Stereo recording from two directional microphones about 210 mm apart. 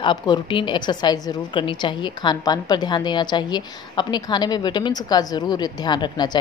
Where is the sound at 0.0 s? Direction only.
20° left (ahead or behind).